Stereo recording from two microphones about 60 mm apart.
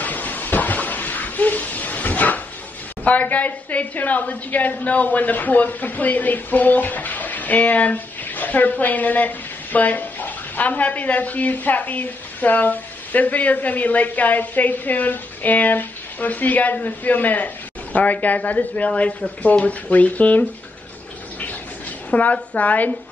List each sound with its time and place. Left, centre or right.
0.0 s a sound: left
3.0 s a woman's voice: left
22.1 s a woman's voice: left